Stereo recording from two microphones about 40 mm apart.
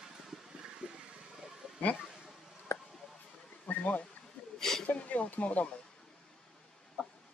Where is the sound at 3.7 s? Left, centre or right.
Left.